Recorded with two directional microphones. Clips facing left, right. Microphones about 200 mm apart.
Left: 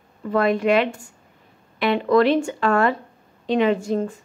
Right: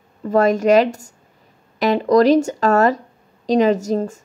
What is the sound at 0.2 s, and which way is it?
A woman's voice, 40° right (ahead or behind).